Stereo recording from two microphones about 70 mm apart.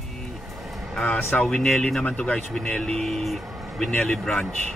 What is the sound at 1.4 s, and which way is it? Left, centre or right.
Speech, centre.